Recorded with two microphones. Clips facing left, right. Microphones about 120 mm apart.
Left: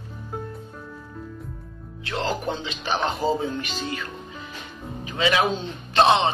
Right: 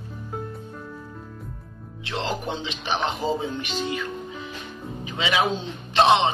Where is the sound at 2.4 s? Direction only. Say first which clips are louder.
Left 1 dB; 20° right (ahead or behind).